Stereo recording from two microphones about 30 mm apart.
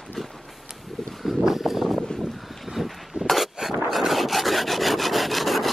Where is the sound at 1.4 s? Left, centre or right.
Centre.